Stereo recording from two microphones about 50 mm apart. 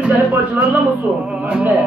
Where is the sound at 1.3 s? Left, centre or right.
Right.